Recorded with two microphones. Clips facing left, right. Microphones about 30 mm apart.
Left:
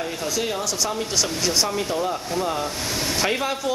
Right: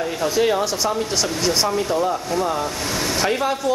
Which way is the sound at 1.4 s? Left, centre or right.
Centre.